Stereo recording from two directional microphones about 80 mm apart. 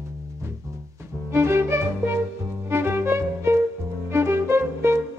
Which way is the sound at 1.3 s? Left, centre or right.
Right.